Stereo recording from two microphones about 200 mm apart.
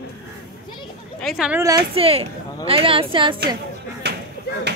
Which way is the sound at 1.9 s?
30° right (ahead or behind).